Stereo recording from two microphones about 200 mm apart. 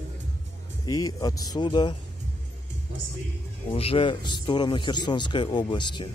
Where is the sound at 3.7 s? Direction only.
30° left (ahead or behind).